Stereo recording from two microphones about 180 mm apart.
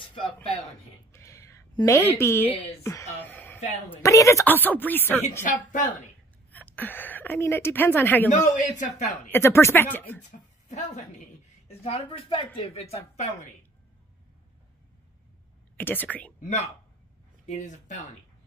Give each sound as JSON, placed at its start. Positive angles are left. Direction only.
{"t": 0.0, "sound": "a sound", "side_deg": 30}
{"t": 1.1, "sound": "a sound", "side_deg": 15}
{"t": 3.9, "sound": "a woman's voice", "side_deg": 15}
{"t": 5.4, "sound": "speech", "side_deg": 45}
{"t": 6.5, "sound": "a woman's voice", "side_deg": 10}
{"t": 8.3, "sound": "speech", "side_deg": 40}
{"t": 9.3, "sound": "a woman's voice", "side_deg": 15}
{"t": 10.7, "sound": "a woman's voice", "side_deg": 40}
{"t": 15.8, "sound": "a woman's voice", "side_deg": 10}
{"t": 16.3, "sound": "speech", "side_deg": 40}